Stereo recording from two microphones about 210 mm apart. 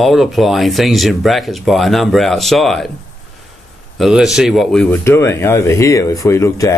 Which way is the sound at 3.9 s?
Centre (ahead or behind).